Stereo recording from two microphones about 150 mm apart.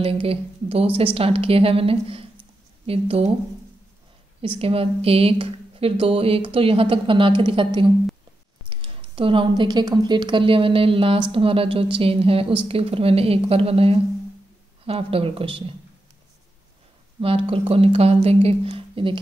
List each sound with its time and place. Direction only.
0.0 s speech: 40° right (ahead or behind)
4.4 s speech: 40° right (ahead or behind)
17.2 s speech: 40° right (ahead or behind)